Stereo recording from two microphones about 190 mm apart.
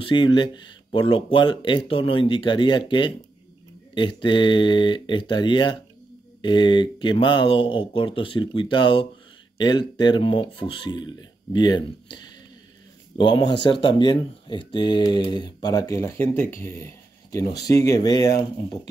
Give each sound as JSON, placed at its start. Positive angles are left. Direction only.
{"t": 0.0, "sound": "speech", "side_deg": 25}